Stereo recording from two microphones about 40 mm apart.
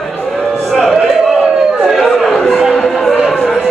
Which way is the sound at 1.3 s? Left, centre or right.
Centre.